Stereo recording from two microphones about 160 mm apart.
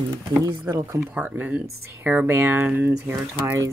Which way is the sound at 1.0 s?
10° right (ahead or behind).